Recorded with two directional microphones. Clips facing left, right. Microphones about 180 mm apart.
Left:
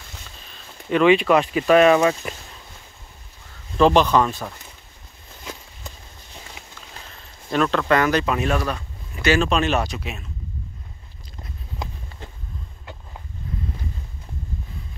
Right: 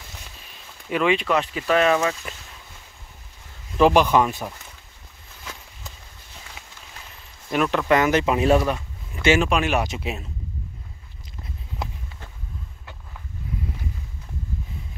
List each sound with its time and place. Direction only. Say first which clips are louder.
0.5 s a sound: left 5 dB; 5° right (ahead or behind)
1.0 s speech: left 6 dB; 80° left
1.9 s speech: left 5 dB; 40° left (ahead or behind)
3.7 s speech: left 1 dB; 10° right (ahead or behind)
7.5 s speech: left 1 dB; 15° right (ahead or behind)
9.8 s speech: right 2 dB; 25° right (ahead or behind)